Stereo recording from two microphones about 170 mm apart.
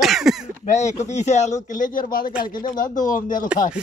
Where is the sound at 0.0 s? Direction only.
Centre (ahead or behind).